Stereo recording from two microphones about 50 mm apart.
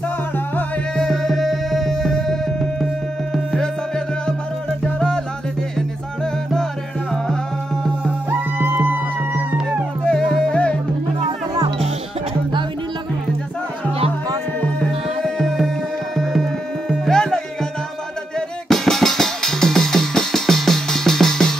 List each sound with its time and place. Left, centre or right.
0.9 s music: centre
7.2 s music: centre
8.3 s music: right
10.0 s music: left
15.2 s music: centre
17.0 s music: centre
18.7 s music: centre